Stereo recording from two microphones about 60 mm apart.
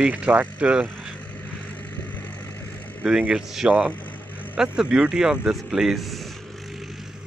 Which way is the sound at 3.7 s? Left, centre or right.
Right.